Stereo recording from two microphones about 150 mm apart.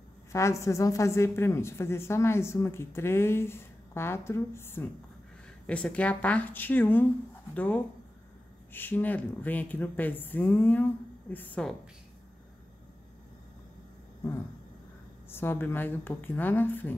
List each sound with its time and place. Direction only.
0.3 s a woman's voice: 20° left (ahead or behind)
15.2 s a woman's voice: 15° left (ahead or behind)